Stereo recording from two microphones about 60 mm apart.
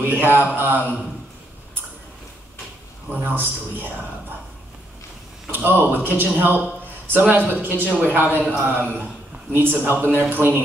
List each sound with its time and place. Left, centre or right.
0.0 s mantra: right
0.6 s a man's voice: right
3.1 s a man's voice: right
5.5 s a man's voice: right